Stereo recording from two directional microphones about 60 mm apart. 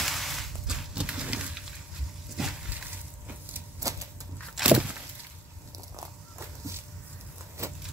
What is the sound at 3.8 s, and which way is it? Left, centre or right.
Typewriter, right.